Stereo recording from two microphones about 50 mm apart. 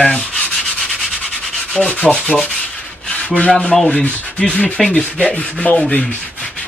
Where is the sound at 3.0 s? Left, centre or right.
Left.